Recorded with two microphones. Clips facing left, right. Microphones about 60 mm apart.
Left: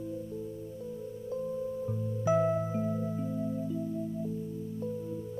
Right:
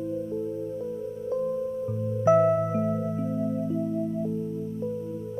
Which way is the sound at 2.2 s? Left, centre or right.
Right.